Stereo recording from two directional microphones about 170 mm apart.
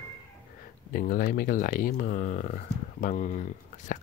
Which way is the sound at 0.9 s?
55° left (ahead or behind).